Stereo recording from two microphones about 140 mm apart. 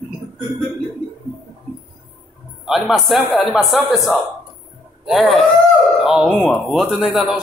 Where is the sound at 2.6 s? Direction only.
Centre (ahead or behind).